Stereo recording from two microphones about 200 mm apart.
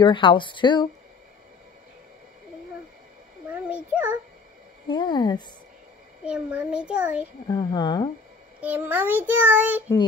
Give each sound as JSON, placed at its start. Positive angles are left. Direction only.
{"t": 0.0, "sound": "speech", "side_deg": 25}
{"t": 3.5, "sound": "a child's voice", "side_deg": -5}
{"t": 4.8, "sound": "speech", "side_deg": 20}
{"t": 6.2, "sound": "a child's voice", "side_deg": -5}
{"t": 7.4, "sound": "speech", "side_deg": 20}
{"t": 8.5, "sound": "child singing", "side_deg": -10}